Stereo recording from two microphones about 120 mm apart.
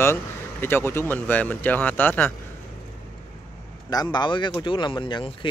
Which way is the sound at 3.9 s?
35° left (ahead or behind).